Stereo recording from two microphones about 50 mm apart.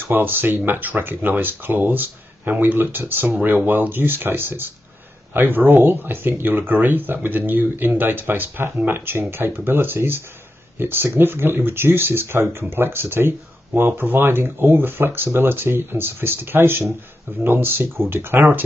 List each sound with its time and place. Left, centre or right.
0.0 s speech: right